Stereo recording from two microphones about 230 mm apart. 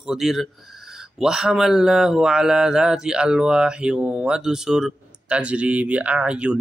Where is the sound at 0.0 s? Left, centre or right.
Centre.